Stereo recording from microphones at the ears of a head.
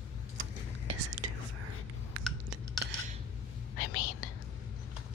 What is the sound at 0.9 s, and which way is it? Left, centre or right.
Whispering, right.